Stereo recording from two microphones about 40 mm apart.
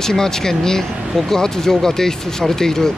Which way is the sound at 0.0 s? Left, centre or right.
Centre.